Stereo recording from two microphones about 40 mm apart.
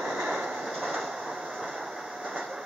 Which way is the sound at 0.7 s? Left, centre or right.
Centre.